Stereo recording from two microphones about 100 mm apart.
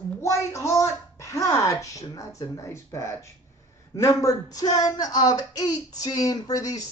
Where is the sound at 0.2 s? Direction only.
30° left (ahead or behind).